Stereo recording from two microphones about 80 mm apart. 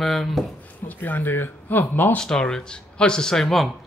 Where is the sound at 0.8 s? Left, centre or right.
Left.